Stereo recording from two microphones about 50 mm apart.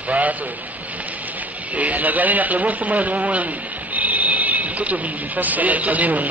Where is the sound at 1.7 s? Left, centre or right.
Right.